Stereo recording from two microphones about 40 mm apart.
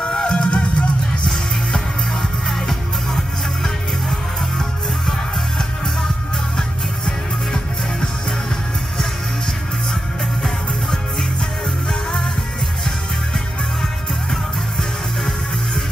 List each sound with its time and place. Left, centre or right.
0.0 s music: left
1.2 s music: centre